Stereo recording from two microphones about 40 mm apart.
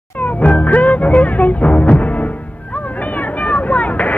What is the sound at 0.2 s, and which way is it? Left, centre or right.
Music, left.